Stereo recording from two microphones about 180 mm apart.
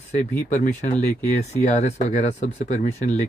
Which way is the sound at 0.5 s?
45° left (ahead or behind).